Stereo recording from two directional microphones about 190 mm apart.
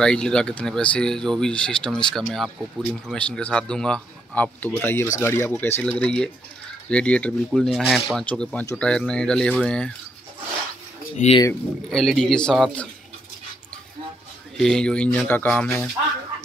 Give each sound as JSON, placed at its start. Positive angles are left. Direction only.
{"t": 0.0, "sound": "speech", "side_deg": 5}
{"t": 11.1, "sound": "speech", "side_deg": 35}
{"t": 11.9, "sound": "speech", "side_deg": 0}
{"t": 14.6, "sound": "speech", "side_deg": 5}